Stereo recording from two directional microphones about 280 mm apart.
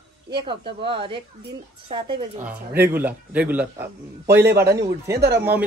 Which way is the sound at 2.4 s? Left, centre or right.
Centre.